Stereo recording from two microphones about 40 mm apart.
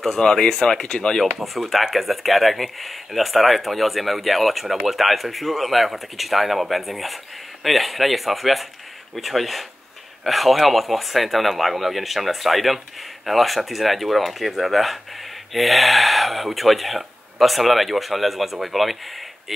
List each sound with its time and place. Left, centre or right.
0.2 s speech: centre
1.4 s speech: centre